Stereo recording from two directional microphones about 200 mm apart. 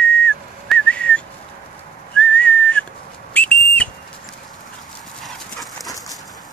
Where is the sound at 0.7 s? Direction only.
5° left (ahead or behind).